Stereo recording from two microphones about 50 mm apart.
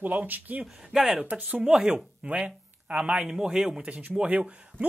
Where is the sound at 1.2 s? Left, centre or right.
Right.